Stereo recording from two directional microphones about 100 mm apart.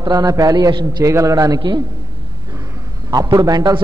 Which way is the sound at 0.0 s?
40° right (ahead or behind).